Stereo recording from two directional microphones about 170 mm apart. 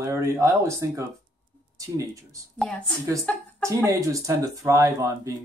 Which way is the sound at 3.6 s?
20° right (ahead or behind).